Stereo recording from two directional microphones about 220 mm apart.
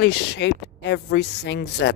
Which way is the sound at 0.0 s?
50° left (ahead or behind).